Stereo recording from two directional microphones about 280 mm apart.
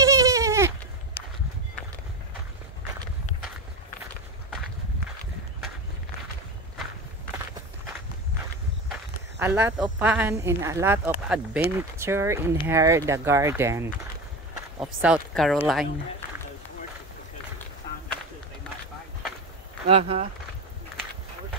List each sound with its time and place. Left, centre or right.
0.0 s goat: centre
9.4 s speech: centre
19.9 s speech: right